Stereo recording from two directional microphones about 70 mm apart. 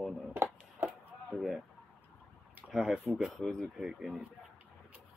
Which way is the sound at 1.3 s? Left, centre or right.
Centre.